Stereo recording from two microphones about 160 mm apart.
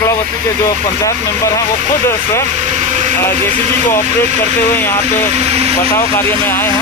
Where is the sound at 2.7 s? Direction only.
45° right (ahead or behind).